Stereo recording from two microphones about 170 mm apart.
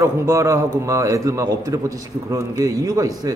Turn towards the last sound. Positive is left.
turn(degrees=-20)  # may be behind; listen again after turning